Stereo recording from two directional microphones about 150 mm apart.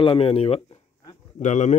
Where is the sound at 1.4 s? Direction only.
50° left (ahead or behind).